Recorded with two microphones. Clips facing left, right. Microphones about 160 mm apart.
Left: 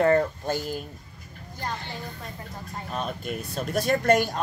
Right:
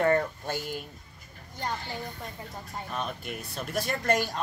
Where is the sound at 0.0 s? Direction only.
35° left (ahead or behind).